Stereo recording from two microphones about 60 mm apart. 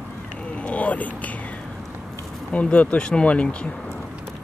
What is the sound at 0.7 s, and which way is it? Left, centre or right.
Vehicle, left.